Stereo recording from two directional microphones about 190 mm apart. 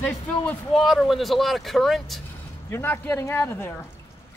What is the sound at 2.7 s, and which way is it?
Speech, 10° left (ahead or behind).